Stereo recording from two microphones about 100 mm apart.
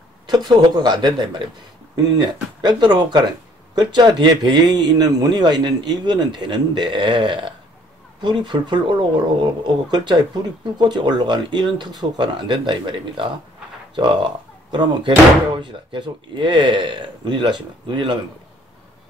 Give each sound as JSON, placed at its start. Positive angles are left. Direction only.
{"t": 0.3, "sound": "speech", "side_deg": -45}
{"t": 14.7, "sound": "speech", "side_deg": -50}